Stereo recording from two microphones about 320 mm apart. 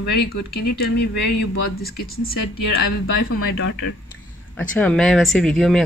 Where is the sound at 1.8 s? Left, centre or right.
Left.